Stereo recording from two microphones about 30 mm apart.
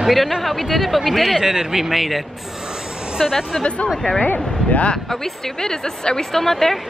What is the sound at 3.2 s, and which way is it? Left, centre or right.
Speech, centre.